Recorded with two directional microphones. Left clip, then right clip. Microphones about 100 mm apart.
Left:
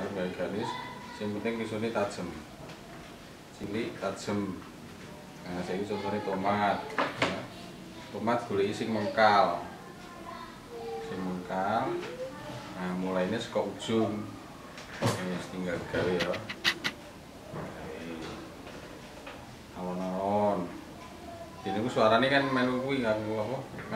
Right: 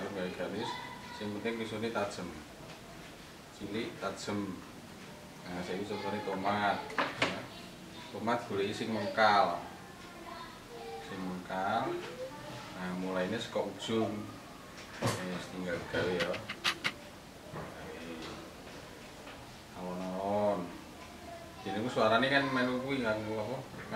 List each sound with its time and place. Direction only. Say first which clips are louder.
0.0 s a sound: left 4 dB; 5° right (ahead or behind)
1.2 s a man's voice: left 4 dB; centre (ahead or behind)
3.7 s a man's voice: left 4 dB; centre (ahead or behind)
5.5 s a man's voice: left 4 dB; 5° right (ahead or behind)
11.4 s a man's voice: left 3 dB; 5° right (ahead or behind)
16.2 s dog: left 3 dB; 20° right (ahead or behind)
19.8 s a sound: left 5 dB; 5° right (ahead or behind)
21.6 s a man's voice: left 4 dB; centre (ahead or behind)